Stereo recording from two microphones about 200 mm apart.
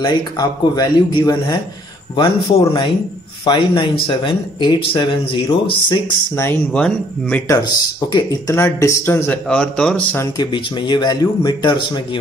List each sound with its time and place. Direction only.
0.0 s speech: 20° left (ahead or behind)
6.3 s speech: 10° left (ahead or behind)
10.3 s speech: 20° left (ahead or behind)